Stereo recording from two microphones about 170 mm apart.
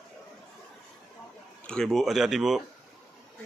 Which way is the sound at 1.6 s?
5° left (ahead or behind).